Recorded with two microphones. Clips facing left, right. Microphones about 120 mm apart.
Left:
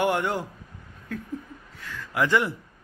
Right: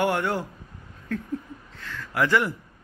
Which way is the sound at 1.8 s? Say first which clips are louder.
Right 1 dB; 15° left (ahead or behind).